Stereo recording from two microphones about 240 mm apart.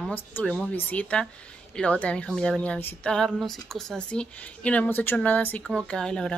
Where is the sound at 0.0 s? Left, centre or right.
Centre.